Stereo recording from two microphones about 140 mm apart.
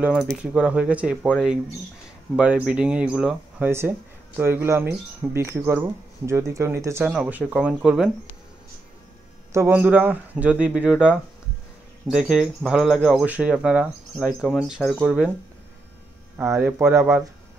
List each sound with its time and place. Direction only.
0.0 s speech: 5° right (ahead or behind)
2.3 s speech: 10° right (ahead or behind)
9.5 s a man's voice: 20° right (ahead or behind)
14.6 s speech: 5° left (ahead or behind)
16.3 s speech: 15° right (ahead or behind)